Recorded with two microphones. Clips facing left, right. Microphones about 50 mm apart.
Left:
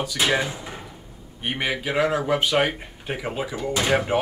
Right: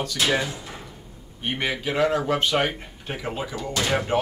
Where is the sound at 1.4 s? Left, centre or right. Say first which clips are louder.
Left 1 dB; centre.